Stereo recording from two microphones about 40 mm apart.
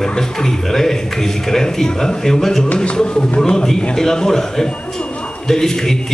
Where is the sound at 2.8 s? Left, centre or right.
Left.